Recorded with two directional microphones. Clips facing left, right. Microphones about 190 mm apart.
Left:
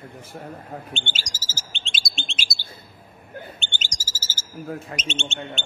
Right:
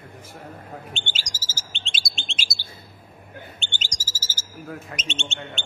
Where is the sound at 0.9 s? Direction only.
50° left (ahead or behind).